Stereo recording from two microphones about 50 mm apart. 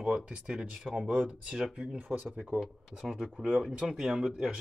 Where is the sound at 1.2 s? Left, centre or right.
Centre.